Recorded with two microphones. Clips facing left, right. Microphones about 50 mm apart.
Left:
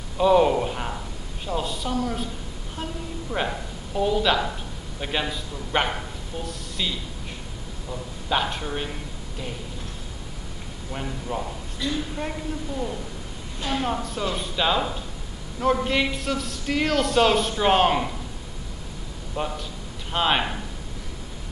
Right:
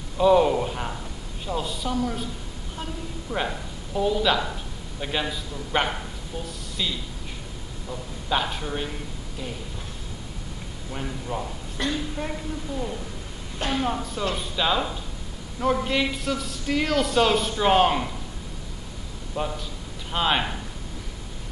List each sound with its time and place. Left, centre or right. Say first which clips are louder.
0.2 s a man's voice: even; centre
10.9 s a man's voice: left 1 dB; centre
11.8 s a woman's voice: right 1 dB; right
12.2 s a man's voice: left 1 dB; centre
19.3 s a man's voice: even; centre